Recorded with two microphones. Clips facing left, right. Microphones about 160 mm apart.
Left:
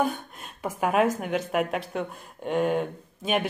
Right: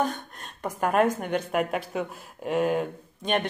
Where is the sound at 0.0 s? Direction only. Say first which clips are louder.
Left 1 dB; 5° left (ahead or behind).